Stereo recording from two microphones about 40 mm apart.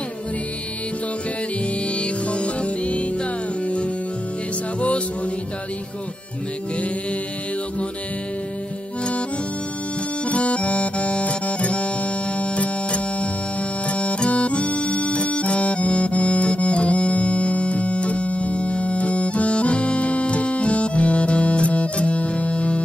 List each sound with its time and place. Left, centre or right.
2.0 s music: left
10.2 s accordion: left
13.8 s music: left